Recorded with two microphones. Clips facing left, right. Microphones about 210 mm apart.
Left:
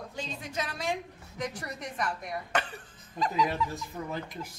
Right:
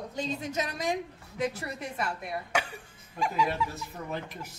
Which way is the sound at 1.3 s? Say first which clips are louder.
Right 4 dB; 5° right (ahead or behind).